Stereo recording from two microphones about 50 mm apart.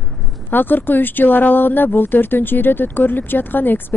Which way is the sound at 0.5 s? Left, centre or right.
Left.